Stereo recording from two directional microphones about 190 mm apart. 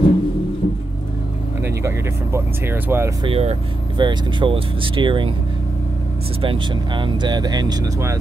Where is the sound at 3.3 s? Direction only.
30° right (ahead or behind).